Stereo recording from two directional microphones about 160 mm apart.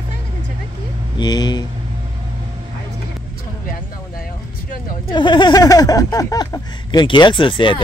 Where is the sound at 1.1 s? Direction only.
25° left (ahead or behind).